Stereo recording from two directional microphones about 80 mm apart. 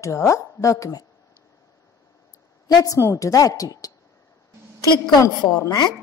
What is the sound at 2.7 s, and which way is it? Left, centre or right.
A woman's voice, left.